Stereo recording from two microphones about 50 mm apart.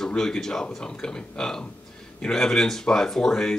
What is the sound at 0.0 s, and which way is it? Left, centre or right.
Speech, centre.